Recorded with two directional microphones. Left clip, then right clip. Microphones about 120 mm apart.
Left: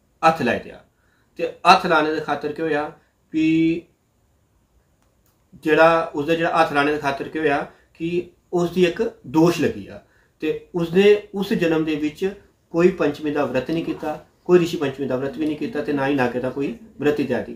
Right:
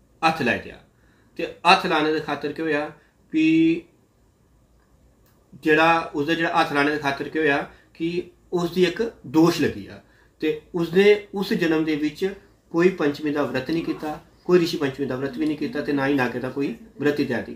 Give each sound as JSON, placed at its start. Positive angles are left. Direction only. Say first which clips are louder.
{"t": 0.2, "sound": "speech", "louder": "left 3 dB", "side_deg": 15}
{"t": 5.6, "sound": "speech", "louder": "left 3 dB", "side_deg": 10}